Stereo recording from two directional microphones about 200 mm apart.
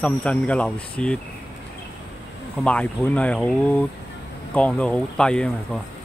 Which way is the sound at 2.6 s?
5° left (ahead or behind).